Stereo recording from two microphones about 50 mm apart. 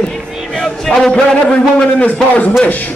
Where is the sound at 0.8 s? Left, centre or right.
Centre.